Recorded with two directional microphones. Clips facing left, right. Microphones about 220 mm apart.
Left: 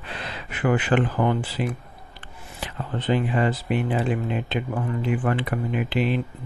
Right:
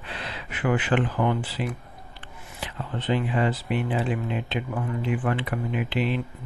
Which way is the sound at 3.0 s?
45° left (ahead or behind).